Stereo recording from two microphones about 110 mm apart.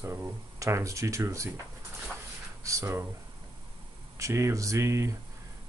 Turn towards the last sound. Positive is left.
turn(degrees=-25)  # may be behind; listen again after turning